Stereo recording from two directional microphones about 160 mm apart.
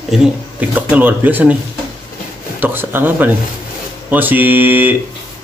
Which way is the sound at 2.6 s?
15° right (ahead or behind).